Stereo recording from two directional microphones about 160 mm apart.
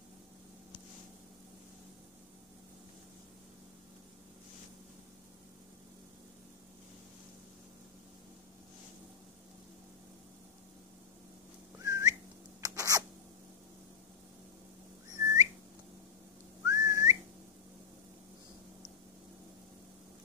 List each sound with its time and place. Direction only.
11.8 s whistling: 20° right (ahead or behind)
12.6 s a sound: 20° right (ahead or behind)
15.1 s whistling: 20° right (ahead or behind)
16.6 s whistling: 20° right (ahead or behind)